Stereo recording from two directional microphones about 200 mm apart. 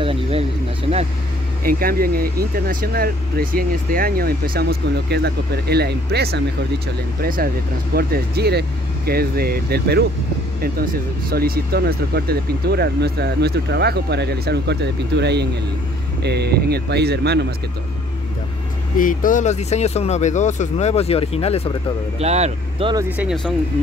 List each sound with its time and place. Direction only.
0.0 s a sound: 30° right (ahead or behind)
1.6 s speech: 45° right (ahead or behind)
18.9 s speech: 40° left (ahead or behind)
22.2 s speech: 30° right (ahead or behind)
23.0 s speech: 5° right (ahead or behind)